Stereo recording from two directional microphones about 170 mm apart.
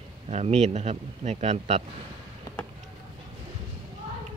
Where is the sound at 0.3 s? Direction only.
40° right (ahead or behind).